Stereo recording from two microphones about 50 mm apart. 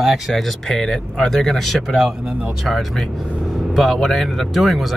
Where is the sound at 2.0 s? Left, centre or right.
Centre.